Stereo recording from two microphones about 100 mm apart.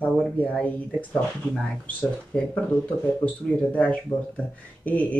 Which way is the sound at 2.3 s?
10° left (ahead or behind).